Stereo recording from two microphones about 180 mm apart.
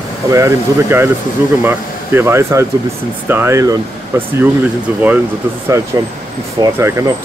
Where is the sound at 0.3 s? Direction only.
15° right (ahead or behind).